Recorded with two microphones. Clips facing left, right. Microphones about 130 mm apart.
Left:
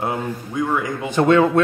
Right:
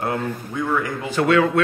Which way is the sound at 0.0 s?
15° left (ahead or behind).